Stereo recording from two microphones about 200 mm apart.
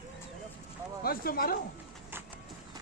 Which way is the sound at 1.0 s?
50° left (ahead or behind).